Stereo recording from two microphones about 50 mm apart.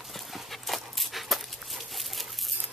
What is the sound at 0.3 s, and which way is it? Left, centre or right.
Dog, centre.